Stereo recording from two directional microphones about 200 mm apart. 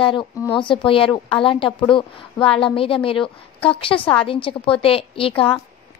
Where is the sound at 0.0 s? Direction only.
25° left (ahead or behind).